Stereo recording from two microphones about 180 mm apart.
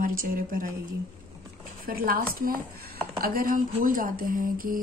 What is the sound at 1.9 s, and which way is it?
Speech, 55° right (ahead or behind).